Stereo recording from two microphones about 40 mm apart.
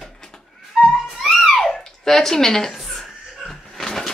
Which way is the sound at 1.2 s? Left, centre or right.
Centre.